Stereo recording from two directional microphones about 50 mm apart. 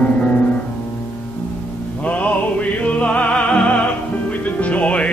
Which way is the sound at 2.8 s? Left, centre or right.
Left.